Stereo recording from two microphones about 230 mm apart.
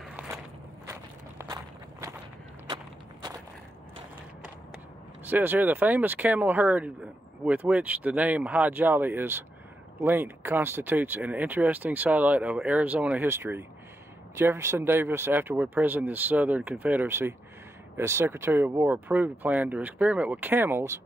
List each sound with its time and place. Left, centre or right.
1.5 s walk: centre
5.2 s speech: centre